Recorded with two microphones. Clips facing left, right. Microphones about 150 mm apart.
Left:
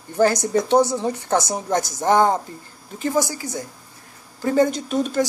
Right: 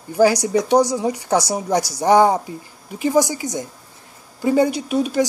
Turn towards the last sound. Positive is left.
turn(degrees=-10)  # may be behind; listen again after turning